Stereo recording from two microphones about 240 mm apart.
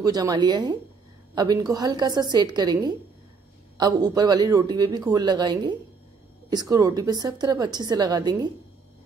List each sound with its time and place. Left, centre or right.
0.0 s a man's voice: centre